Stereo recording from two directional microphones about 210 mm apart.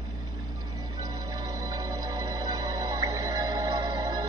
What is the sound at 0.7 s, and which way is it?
Music, 15° right (ahead or behind).